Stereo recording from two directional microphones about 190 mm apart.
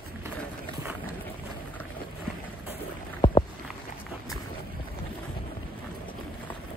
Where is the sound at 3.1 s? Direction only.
25° left (ahead or behind).